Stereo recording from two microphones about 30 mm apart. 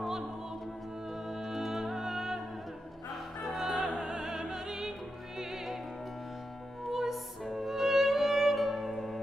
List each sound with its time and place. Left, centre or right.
1.3 s music: centre
4.0 s music: centre
6.9 s music: centre